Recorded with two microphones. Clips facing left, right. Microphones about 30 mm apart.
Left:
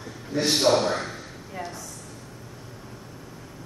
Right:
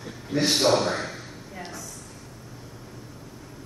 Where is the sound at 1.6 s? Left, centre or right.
Centre.